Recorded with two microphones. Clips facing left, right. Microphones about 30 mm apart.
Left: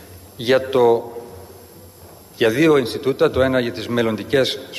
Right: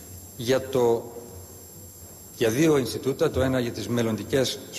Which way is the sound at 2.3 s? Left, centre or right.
Left.